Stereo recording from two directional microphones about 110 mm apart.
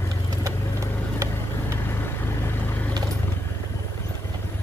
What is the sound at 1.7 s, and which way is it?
Vehicle, 20° left (ahead or behind).